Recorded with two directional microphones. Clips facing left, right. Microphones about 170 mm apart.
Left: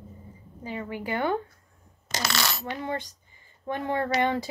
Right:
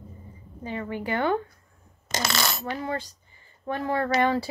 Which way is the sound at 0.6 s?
15° left (ahead or behind).